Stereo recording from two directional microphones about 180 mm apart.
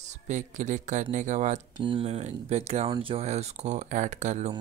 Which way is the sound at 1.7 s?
30° right (ahead or behind).